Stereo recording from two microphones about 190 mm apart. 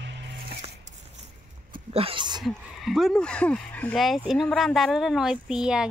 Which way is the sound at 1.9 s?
25° right (ahead or behind).